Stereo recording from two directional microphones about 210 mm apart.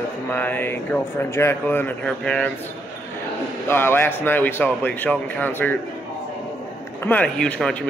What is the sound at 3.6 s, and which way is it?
Speech, 10° left (ahead or behind).